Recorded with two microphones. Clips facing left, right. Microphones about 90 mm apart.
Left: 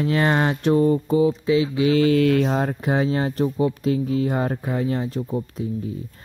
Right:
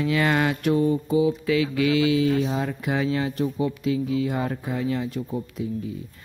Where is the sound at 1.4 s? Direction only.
25° left (ahead or behind).